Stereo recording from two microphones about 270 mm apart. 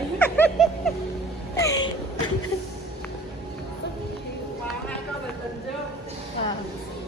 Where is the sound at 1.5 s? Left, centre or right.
Centre.